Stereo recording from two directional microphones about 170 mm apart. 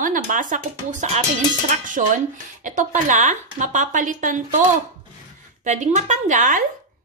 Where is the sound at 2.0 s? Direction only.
50° right (ahead or behind).